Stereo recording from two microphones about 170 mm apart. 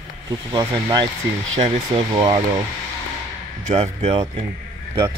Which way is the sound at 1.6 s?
40° right (ahead or behind).